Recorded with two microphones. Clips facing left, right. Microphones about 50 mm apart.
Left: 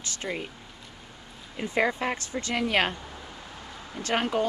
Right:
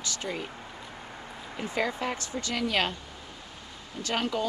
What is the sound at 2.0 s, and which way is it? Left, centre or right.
Speech, left.